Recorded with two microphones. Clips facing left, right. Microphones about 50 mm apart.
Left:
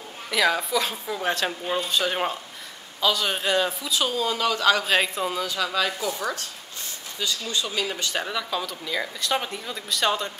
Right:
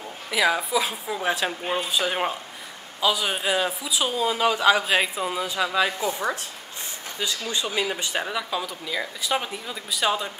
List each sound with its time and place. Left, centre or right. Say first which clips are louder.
0.3 s speech: even; centre
5.4 s speech: right 4 dB; right